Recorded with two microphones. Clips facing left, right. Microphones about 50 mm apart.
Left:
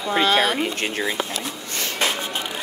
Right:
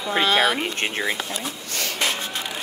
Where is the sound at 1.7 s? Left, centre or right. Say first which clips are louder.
Left 1 dB; left.